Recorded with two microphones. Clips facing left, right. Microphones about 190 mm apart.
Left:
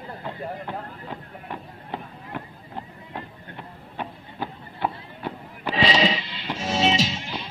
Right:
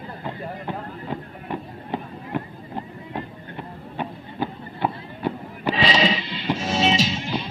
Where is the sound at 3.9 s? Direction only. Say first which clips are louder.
Right 4 dB; 5° right (ahead or behind).